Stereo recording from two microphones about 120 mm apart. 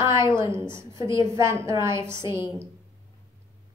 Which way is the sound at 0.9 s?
40° left (ahead or behind).